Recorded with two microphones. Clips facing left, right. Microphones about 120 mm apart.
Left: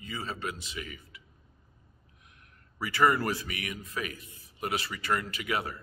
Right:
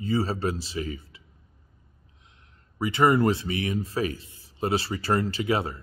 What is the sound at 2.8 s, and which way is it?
A man's voice, 20° right (ahead or behind).